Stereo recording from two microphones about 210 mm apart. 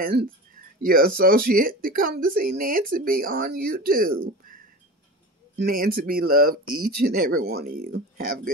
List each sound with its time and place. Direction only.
0.0 s speech: 45° right (ahead or behind)
5.6 s speech: 45° right (ahead or behind)